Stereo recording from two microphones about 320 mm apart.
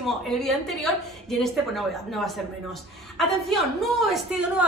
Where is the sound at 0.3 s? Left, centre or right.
Centre.